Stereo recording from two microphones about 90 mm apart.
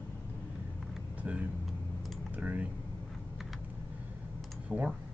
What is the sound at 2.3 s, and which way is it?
Typing, 20° right (ahead or behind).